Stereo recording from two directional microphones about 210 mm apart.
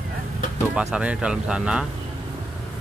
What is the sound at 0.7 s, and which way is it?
Speech, 5° right (ahead or behind).